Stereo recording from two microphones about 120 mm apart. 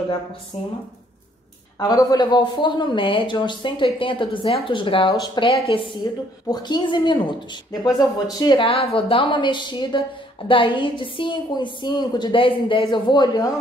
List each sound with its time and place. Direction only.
0.5 s speech: 55° left (ahead or behind)
1.8 s a woman's voice: 30° left (ahead or behind)
5.1 s speech: 35° left (ahead or behind)
5.7 s a woman's voice: 50° left (ahead or behind)
6.5 s a woman's voice: 40° left (ahead or behind)